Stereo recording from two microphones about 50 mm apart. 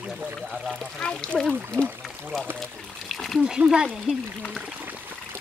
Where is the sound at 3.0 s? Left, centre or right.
Centre.